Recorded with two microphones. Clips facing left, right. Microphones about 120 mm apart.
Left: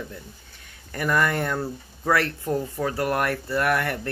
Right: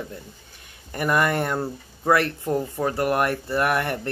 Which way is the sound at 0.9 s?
20° right (ahead or behind).